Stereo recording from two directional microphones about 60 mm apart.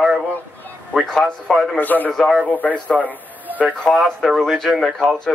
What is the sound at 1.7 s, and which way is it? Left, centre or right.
Speech, left.